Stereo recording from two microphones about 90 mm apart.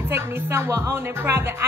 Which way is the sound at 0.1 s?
25° right (ahead or behind).